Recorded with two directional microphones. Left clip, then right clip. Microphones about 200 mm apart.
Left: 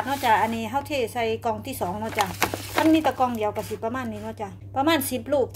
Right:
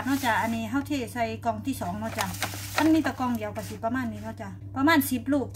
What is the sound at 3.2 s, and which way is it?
A woman's voice, 35° left (ahead or behind).